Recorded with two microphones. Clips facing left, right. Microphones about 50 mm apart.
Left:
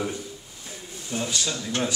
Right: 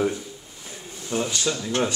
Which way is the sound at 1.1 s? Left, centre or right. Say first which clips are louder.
Right 3 dB; right.